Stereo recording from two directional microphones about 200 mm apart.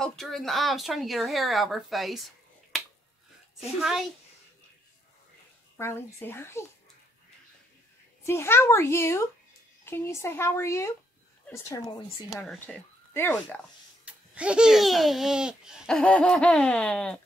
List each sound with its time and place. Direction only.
0.0 s speech: centre (ahead or behind)
2.7 s finger snapping: centre (ahead or behind)
5.8 s a child's voice: 10° left (ahead or behind)
8.3 s a child's voice: 10° left (ahead or behind)
12.4 s speech: 5° left (ahead or behind)
14.0 s speech: 5° right (ahead or behind)